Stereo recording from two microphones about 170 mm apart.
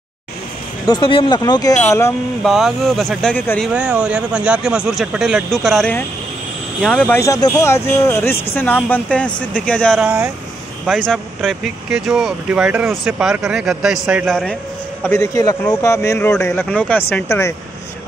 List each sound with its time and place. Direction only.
0.8 s speech: 30° left (ahead or behind)
2.4 s speech: centre (ahead or behind)
3.6 s speech: 5° right (ahead or behind)
9.9 s speech: 10° right (ahead or behind)
10.9 s speech: 5° left (ahead or behind)
15.0 s speech: 15° left (ahead or behind)
15.6 s speech: 5° left (ahead or behind)